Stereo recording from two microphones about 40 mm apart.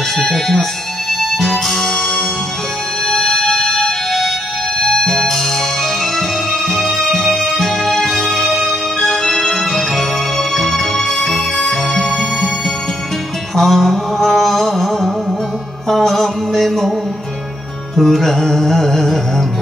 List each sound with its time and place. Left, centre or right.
0.2 s music: centre
6.7 s music: centre
13.6 s mantra: centre
15.9 s music: centre
17.9 s music: centre